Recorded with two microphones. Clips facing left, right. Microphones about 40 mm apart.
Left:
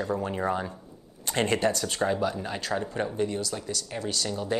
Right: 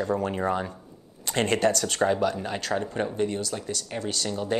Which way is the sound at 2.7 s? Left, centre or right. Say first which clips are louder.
Right 1 dB; right.